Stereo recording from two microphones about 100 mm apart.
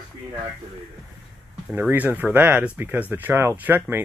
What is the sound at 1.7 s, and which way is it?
Speech, 15° right (ahead or behind).